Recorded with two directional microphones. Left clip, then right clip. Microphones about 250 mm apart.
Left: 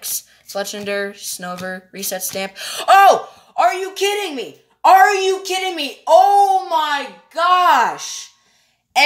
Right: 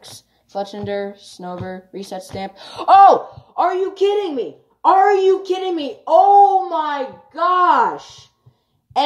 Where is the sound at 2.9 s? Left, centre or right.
Left.